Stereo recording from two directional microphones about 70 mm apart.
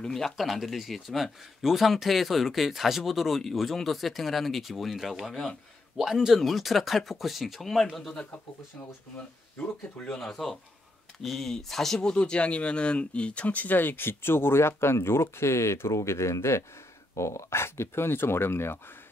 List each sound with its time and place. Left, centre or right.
0.0 s speech: centre
9.9 s speech: centre; by 18.8 s left